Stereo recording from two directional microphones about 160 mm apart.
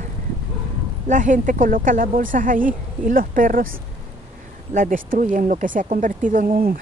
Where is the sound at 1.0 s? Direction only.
55° right (ahead or behind).